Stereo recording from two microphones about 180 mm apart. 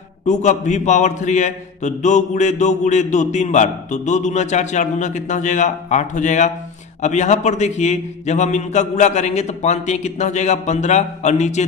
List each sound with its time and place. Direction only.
0.3 s a man's voice: 40° left (ahead or behind)